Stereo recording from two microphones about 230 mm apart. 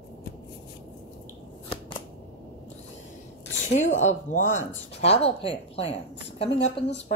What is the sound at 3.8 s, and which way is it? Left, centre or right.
A woman's voice, left.